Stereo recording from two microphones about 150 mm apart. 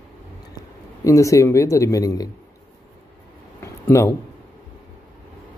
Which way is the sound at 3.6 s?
15° left (ahead or behind).